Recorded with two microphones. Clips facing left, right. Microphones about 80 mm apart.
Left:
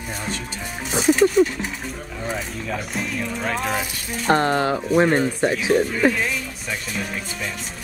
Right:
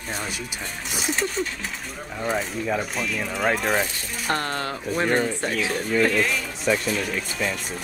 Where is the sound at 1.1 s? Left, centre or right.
Centre.